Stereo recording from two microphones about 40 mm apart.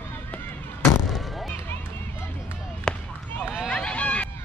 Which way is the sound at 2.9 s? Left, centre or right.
Centre.